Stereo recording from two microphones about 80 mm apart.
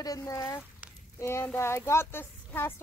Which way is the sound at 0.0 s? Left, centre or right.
Left.